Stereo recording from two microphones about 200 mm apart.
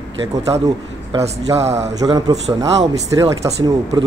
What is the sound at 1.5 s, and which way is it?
Speech, 30° right (ahead or behind).